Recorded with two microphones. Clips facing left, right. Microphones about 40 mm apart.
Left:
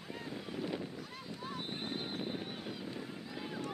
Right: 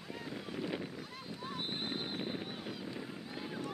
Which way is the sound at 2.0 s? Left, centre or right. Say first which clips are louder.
Even; centre.